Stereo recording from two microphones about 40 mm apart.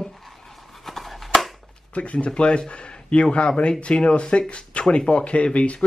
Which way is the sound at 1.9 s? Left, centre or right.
Left.